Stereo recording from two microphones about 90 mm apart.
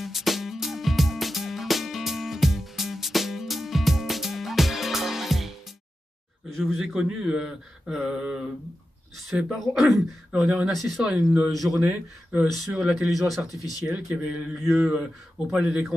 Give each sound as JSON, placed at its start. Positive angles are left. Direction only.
{"t": 0.0, "sound": "music", "side_deg": 0}
{"t": 6.5, "sound": "speech", "side_deg": 0}
{"t": 9.6, "sound": "speech", "side_deg": 0}
{"t": 11.8, "sound": "speech", "side_deg": -15}
{"t": 12.7, "sound": "speech", "side_deg": -5}
{"t": 13.6, "sound": "speech", "side_deg": 40}
{"t": 13.9, "sound": "speech", "side_deg": -15}
{"t": 14.6, "sound": "speech", "side_deg": -5}